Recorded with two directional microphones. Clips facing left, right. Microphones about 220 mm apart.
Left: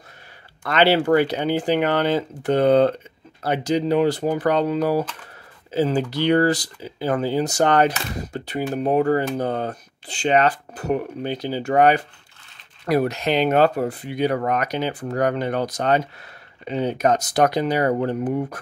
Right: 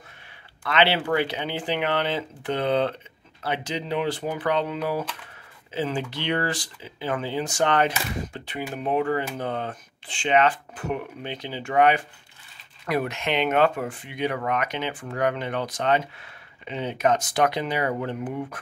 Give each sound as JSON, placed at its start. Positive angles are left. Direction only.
{"t": 0.7, "sound": "speech", "side_deg": 40}